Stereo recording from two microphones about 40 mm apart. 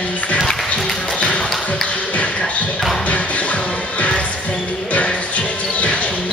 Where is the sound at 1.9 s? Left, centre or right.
Left.